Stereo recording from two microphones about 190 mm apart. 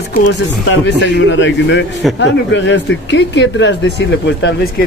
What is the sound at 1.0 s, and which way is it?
Speech, 75° left (ahead or behind).